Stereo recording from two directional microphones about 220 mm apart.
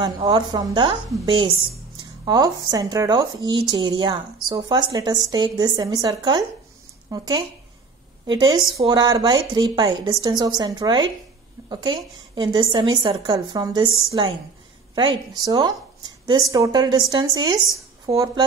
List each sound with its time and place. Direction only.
0.0 s a woman's voice: 20° right (ahead or behind)
15.4 s a woman's voice: 15° right (ahead or behind)